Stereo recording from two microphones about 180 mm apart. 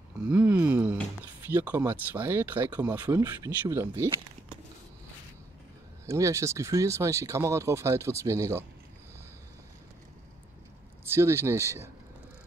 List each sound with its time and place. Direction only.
0.3 s a sound: 10° right (ahead or behind)
1.4 s speech: 10° right (ahead or behind)
6.0 s speech: 15° right (ahead or behind)
11.1 s speech: 15° right (ahead or behind)